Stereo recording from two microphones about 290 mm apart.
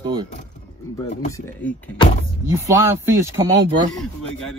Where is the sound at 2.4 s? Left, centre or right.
Centre.